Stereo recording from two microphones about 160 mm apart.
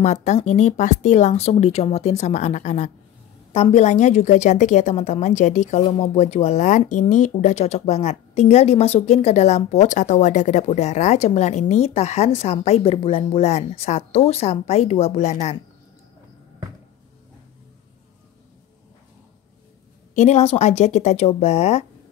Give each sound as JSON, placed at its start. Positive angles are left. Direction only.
{"t": 0.0, "sound": "a woman's voice", "side_deg": 45}
{"t": 20.2, "sound": "speech", "side_deg": 45}